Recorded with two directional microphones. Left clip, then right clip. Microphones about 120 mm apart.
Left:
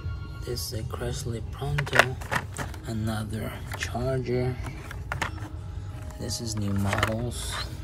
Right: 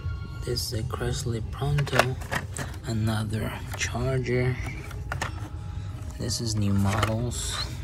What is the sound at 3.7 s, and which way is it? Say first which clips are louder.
Speech: even; 35° left (ahead or behind).